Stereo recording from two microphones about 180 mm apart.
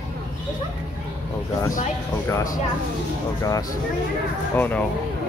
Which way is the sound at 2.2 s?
20° left (ahead or behind).